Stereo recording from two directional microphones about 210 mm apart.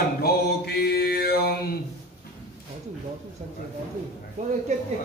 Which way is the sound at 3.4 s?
35° right (ahead or behind).